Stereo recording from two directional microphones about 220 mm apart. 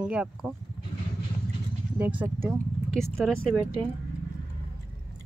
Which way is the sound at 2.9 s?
Centre (ahead or behind).